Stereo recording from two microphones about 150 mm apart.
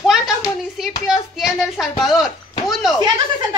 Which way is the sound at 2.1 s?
Centre (ahead or behind).